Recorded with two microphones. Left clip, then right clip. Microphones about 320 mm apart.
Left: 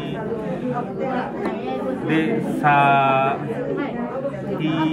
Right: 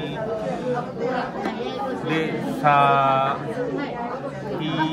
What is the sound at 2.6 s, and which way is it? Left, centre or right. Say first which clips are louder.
Speech: left 1 dB; centre.